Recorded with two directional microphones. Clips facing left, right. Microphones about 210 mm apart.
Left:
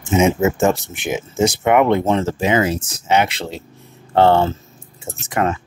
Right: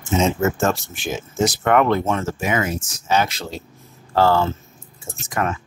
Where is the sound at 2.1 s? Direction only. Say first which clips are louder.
Left 5 dB; 30° left (ahead or behind).